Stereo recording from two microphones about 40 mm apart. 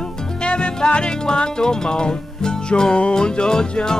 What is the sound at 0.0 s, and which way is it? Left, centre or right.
Music, left.